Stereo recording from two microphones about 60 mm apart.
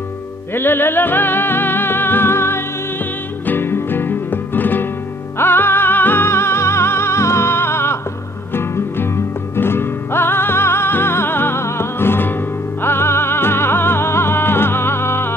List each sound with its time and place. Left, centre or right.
0.6 s music: left